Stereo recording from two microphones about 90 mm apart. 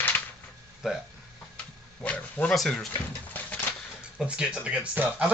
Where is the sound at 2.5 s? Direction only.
5° left (ahead or behind).